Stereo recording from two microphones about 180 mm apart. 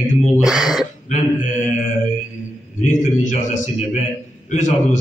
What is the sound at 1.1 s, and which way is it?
A man's voice, 45° left (ahead or behind).